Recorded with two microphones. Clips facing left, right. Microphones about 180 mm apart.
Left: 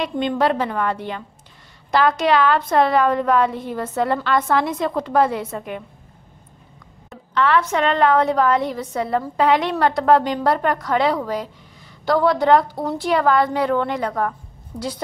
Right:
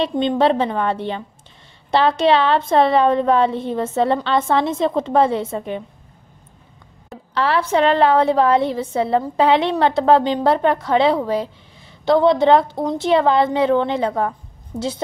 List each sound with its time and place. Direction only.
0.0 s a woman's voice: 25° right (ahead or behind)
7.1 s a woman's voice: 35° right (ahead or behind)